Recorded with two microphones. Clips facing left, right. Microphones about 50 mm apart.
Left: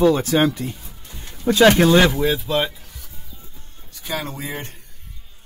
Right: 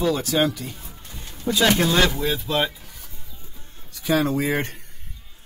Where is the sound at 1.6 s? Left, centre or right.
Left.